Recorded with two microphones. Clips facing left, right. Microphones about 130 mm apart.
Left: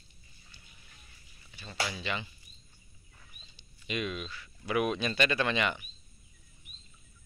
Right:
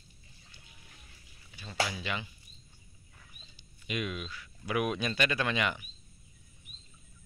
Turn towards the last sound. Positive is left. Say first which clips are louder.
# left 1 dB
turn(degrees=-10)  # may be behind; listen again after turning